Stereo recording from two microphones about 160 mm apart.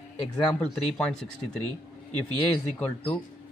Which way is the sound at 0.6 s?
5° left (ahead or behind).